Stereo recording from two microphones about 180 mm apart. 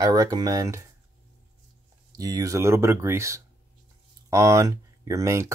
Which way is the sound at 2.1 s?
20° right (ahead or behind).